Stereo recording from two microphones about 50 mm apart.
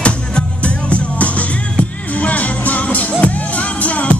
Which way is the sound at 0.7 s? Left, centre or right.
Left.